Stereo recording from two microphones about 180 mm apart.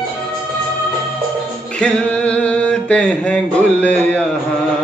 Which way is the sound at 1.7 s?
5° left (ahead or behind).